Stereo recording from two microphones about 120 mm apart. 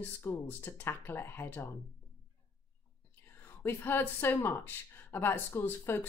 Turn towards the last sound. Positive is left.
turn(degrees=20)  # may be behind; listen again after turning